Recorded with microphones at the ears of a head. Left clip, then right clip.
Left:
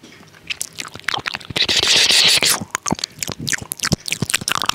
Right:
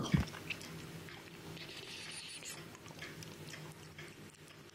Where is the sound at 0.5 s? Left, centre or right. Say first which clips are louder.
Left 18 dB; left.